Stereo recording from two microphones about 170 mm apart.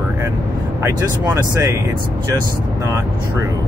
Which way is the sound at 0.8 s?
15° right (ahead or behind).